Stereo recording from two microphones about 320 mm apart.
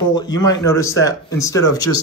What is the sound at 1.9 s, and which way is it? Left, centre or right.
Speech, left.